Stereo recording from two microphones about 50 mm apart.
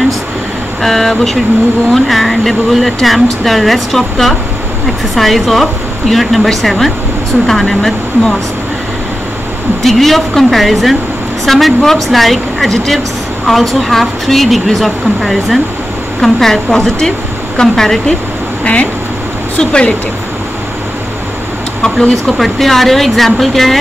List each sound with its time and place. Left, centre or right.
0.8 s speech: centre
9.8 s a woman's voice: centre
18.6 s speech: left
22.4 s speech: centre